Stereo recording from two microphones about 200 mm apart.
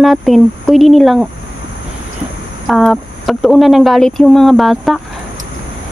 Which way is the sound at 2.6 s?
Centre (ahead or behind).